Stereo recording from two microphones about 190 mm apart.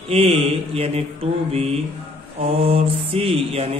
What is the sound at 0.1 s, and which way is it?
Mantra, 30° right (ahead or behind).